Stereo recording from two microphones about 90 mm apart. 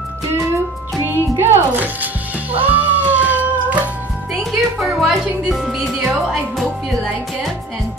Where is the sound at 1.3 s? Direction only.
20° right (ahead or behind).